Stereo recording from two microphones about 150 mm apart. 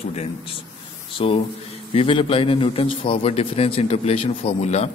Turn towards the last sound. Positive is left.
turn(degrees=45)  # may be behind; listen again after turning